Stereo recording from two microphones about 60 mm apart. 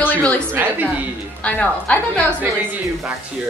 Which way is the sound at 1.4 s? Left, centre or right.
Left.